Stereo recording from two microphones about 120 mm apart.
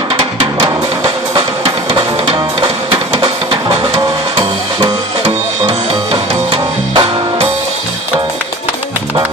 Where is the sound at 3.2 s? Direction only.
50° right (ahead or behind).